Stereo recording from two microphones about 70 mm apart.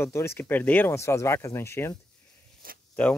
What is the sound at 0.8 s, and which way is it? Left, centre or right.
Speech, left.